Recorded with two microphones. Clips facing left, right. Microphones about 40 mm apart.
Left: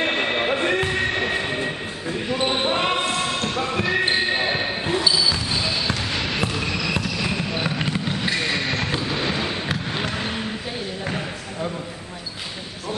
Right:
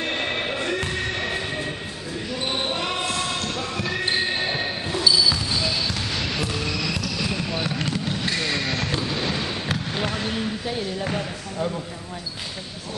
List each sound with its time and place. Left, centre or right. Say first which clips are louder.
0.0 s train: left 4 dB; left
2.4 s basketball bounce: left 5 dB; left; by 11.7 s centre